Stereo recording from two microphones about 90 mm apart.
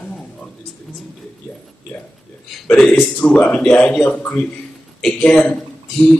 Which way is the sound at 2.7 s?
10° left (ahead or behind).